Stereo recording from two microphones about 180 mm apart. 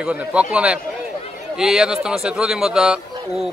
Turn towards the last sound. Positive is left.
turn(degrees=-5)  # may be behind; listen again after turning